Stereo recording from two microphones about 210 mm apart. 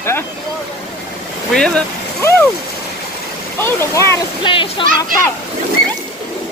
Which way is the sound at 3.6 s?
10° left (ahead or behind).